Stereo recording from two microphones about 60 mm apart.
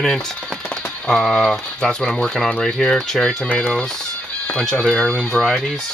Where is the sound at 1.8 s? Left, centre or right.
Centre.